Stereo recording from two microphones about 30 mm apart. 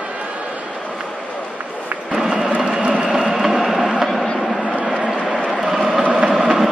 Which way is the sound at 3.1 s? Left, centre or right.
Centre.